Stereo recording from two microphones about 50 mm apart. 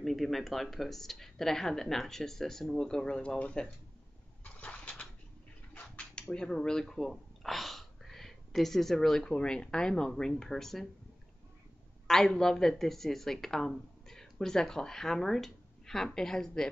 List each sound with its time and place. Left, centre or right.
0.0 s speech: centre; by 3.7 s left
4.4 s a sound: left
5.8 s mechanisms: left
6.3 s speech: centre
12.1 s speech: centre